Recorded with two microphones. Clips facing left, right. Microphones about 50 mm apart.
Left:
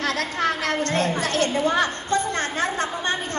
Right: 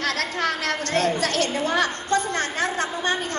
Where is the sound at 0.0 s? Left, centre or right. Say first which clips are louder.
Left 1 dB; left.